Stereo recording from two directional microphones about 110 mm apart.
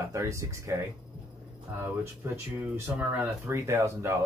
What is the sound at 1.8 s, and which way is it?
Speech, 20° right (ahead or behind).